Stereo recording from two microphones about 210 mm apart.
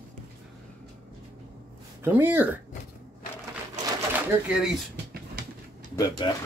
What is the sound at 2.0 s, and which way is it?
Speech, 10° right (ahead or behind).